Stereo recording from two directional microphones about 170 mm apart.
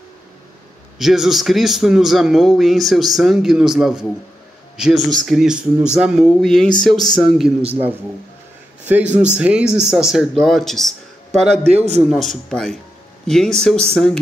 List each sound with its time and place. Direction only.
0.9 s a man's voice: centre (ahead or behind)
8.8 s a man's voice: 10° right (ahead or behind)
11.6 s a man's voice: 40° right (ahead or behind)
12.0 s a man's voice: centre (ahead or behind)